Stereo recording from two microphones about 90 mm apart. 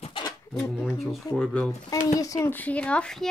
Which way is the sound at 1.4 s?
10° left (ahead or behind).